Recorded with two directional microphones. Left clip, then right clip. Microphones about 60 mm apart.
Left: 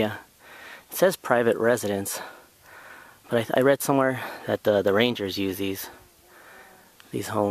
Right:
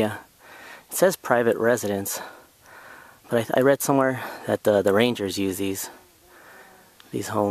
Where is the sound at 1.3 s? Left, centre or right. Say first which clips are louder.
Right 1 dB; centre.